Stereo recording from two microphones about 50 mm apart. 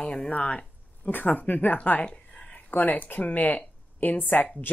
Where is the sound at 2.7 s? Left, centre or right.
Left.